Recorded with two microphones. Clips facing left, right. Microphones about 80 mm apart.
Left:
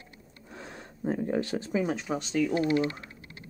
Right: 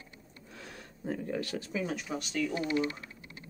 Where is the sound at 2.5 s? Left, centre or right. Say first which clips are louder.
Left 4 dB; left.